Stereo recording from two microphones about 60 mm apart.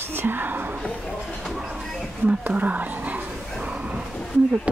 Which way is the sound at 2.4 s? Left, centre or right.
Right.